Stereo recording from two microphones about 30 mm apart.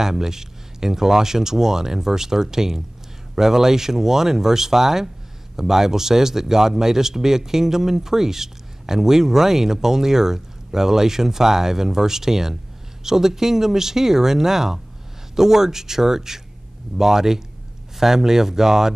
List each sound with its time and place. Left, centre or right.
0.0 s a man's voice: centre